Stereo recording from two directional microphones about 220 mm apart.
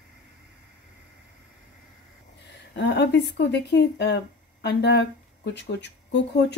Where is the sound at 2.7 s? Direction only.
50° left (ahead or behind).